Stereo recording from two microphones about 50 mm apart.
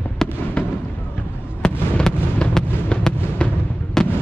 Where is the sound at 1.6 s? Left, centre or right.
Centre.